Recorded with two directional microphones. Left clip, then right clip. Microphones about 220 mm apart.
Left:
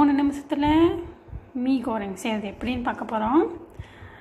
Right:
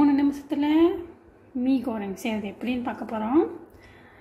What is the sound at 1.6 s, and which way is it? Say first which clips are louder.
A woman's voice: left 1 dB; 5° right (ahead or behind).